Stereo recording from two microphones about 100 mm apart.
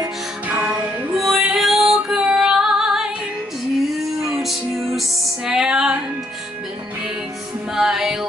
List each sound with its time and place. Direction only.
0.5 s music: 15° right (ahead or behind)
1.1 s female singing: 5° right (ahead or behind)
4.2 s music: centre (ahead or behind)
7.7 s music: 5° right (ahead or behind)